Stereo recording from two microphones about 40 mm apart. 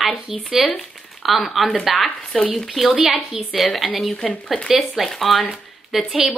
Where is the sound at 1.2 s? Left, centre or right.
Centre.